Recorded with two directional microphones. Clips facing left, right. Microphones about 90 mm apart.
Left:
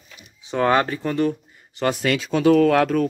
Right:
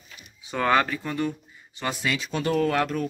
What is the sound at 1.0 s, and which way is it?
Speech, 45° left (ahead or behind).